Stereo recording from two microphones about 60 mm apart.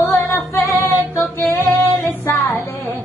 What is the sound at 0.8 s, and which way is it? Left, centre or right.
Music, left.